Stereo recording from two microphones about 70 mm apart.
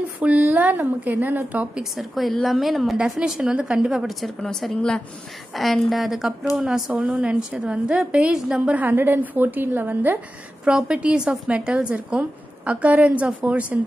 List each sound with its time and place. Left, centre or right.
0.2 s a woman's voice: right
1.8 s a woman's voice: centre
4.2 s a woman's voice: centre
6.9 s a woman's voice: right
10.6 s a woman's voice: centre